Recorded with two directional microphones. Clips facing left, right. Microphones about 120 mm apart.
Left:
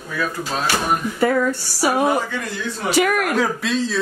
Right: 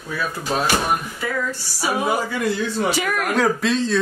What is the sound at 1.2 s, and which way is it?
Speech, 55° left (ahead or behind).